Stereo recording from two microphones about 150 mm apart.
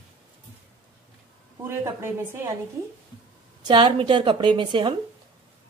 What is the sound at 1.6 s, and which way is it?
Speech, 15° right (ahead or behind).